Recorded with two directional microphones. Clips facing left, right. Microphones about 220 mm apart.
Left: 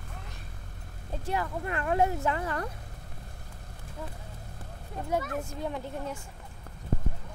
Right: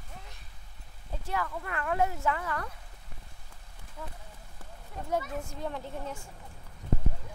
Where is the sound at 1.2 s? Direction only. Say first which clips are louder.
Left 3 dB; 20° left (ahead or behind).